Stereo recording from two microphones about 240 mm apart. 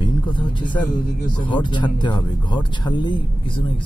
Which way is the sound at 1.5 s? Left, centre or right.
Centre.